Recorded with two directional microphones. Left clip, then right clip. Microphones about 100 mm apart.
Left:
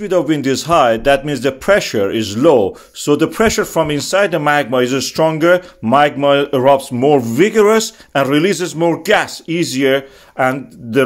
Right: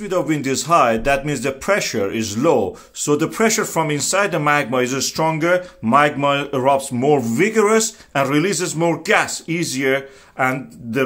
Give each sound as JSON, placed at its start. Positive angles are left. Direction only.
{"t": 0.0, "sound": "speech", "side_deg": 35}